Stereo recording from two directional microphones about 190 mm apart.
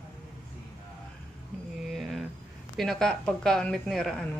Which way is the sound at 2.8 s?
Centre (ahead or behind).